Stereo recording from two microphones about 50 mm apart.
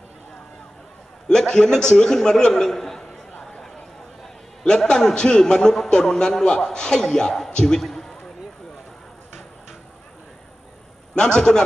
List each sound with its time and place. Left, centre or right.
1.3 s a man's voice: centre
3.4 s a sound: centre
4.6 s a man's voice: centre
11.1 s a man's voice: centre